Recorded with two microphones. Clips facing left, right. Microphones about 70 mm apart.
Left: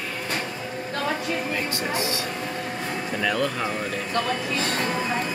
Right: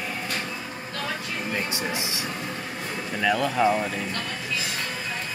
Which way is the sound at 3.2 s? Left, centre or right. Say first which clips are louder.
Right 4 dB; centre.